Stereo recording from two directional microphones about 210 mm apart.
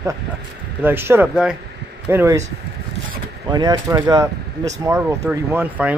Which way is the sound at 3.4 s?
20° right (ahead or behind).